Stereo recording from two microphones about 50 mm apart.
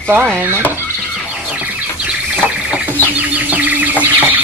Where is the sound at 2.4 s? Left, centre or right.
Right.